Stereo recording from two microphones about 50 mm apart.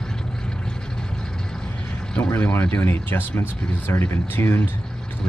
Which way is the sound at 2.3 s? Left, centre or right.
Left.